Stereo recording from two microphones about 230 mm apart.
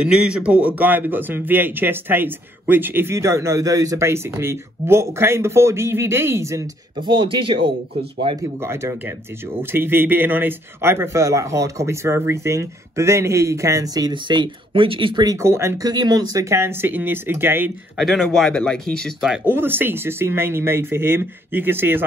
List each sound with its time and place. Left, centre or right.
0.0 s a man's voice: centre; by 8.5 s right
8.5 s a man's voice: centre